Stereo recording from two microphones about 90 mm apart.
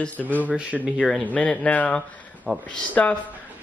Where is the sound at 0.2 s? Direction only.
5° left (ahead or behind).